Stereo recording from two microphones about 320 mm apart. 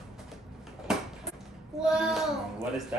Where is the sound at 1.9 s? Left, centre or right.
Centre.